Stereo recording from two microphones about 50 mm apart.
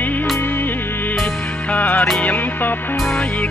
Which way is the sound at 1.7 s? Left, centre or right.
Left.